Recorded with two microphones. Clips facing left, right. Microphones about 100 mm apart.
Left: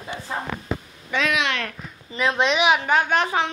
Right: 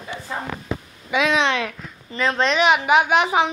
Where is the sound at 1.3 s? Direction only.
25° right (ahead or behind).